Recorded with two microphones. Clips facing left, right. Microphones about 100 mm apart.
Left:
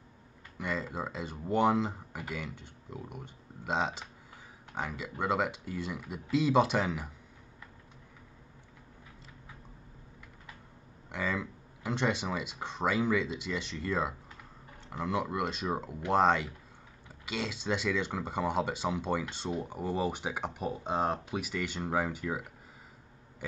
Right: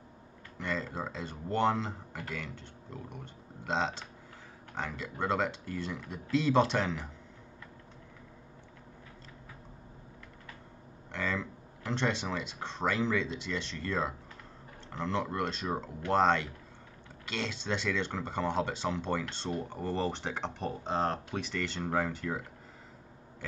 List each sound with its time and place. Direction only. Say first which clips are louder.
0.6 s speech: even; 10° left (ahead or behind)
11.1 s speech: left 1 dB; 10° left (ahead or behind)